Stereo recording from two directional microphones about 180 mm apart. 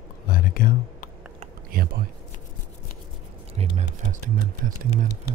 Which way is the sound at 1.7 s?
55° right (ahead or behind).